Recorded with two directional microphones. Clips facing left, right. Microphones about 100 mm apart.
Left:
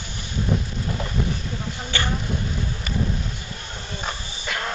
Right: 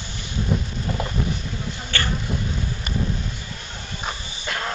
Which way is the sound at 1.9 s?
15° left (ahead or behind).